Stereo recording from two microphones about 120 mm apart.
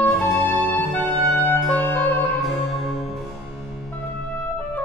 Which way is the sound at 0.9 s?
15° left (ahead or behind).